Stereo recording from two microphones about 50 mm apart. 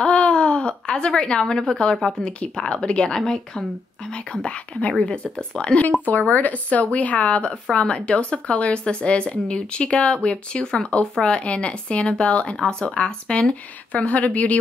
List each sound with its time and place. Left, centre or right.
0.0 s a sound: left
2.2 s speech: centre
6.0 s speech: left